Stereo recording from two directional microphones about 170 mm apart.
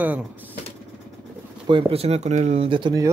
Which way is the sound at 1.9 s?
35° right (ahead or behind).